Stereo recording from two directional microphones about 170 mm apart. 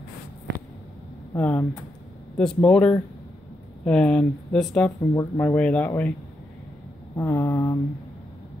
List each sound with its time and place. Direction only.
1.3 s speech: 10° left (ahead or behind)
7.2 s speech: 15° left (ahead or behind)